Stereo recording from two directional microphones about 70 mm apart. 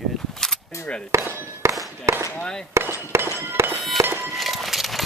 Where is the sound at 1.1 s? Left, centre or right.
Right.